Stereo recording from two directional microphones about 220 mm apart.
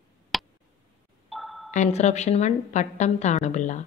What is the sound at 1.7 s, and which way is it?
A woman's voice, 30° left (ahead or behind).